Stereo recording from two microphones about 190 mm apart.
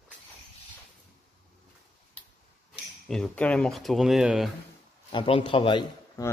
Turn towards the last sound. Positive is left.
turn(degrees=25)  # may be behind; listen again after turning